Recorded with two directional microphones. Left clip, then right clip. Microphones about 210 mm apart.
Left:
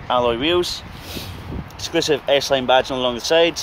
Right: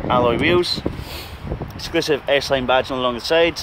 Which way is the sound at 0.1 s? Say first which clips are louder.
Right 1 dB; 10° right (ahead or behind).